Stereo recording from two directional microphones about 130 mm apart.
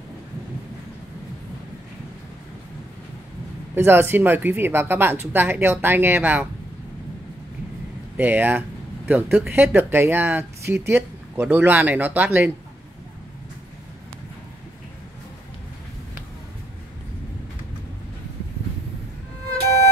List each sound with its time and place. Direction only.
3.7 s speech: 15° right (ahead or behind)
8.2 s speech: 15° right (ahead or behind)